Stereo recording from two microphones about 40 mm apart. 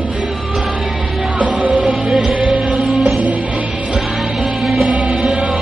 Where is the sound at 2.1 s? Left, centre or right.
Right.